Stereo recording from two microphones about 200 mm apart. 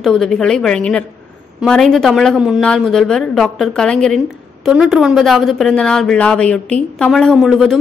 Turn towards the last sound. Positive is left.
turn(degrees=0)  # may be behind; listen again after turning